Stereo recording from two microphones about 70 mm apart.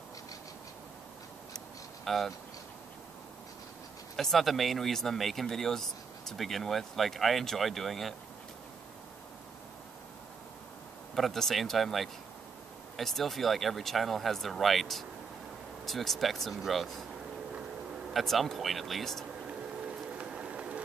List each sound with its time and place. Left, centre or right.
2.0 s speech: centre
4.2 s speech: centre
11.1 s speech: centre
18.1 s speech: centre
20.2 s a sound: centre